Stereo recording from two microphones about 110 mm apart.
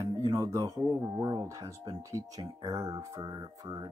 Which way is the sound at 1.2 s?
30° right (ahead or behind).